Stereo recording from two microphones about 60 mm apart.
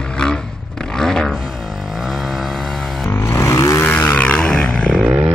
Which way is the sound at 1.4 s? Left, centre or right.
Centre.